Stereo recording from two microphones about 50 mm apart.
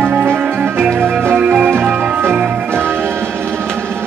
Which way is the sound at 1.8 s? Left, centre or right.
Right.